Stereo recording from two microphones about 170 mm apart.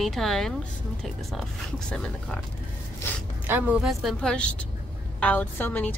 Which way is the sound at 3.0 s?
15° left (ahead or behind).